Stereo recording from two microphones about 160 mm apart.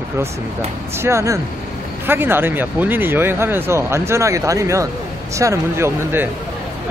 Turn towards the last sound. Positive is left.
turn(degrees=-15)  # may be behind; listen again after turning